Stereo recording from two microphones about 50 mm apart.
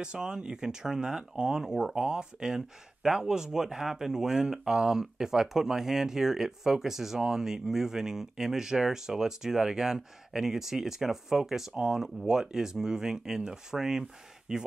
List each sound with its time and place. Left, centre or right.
0.0 s speech: centre